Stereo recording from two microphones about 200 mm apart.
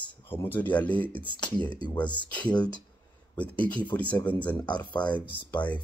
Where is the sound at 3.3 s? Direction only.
5° left (ahead or behind).